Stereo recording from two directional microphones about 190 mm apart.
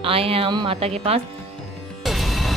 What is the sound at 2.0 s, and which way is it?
Music, centre (ahead or behind).